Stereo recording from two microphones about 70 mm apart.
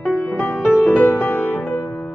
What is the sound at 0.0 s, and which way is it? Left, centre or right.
Music, left.